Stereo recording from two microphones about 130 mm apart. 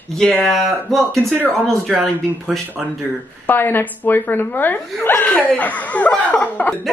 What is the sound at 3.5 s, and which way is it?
Speech, 15° left (ahead or behind).